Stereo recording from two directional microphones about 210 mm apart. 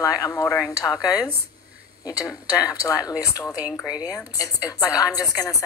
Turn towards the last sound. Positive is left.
turn(degrees=15)  # may be behind; listen again after turning